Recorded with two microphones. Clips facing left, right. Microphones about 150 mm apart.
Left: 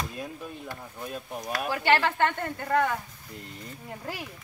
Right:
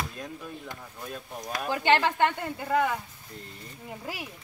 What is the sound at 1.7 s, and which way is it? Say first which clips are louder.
A woman's voice: right 1 dB; 20° right (ahead or behind).